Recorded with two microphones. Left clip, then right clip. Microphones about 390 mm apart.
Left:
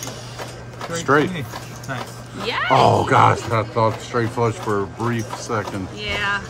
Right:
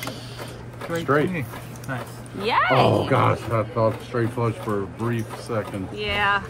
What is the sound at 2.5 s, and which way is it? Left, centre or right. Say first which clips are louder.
Speech: left 2 dB; centre.